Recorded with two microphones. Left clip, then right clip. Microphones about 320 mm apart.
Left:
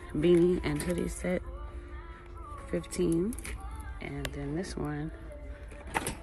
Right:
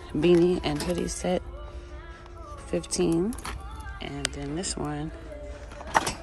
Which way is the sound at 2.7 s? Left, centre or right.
Centre.